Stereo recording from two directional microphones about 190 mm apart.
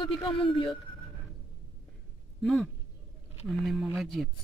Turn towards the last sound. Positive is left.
turn(degrees=0)  # may be behind; listen again after turning